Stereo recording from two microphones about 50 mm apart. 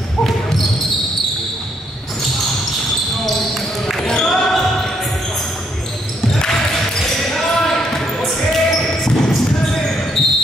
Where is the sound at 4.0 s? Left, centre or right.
Centre.